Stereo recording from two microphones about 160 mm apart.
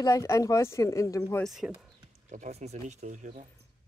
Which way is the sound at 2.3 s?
45° right (ahead or behind).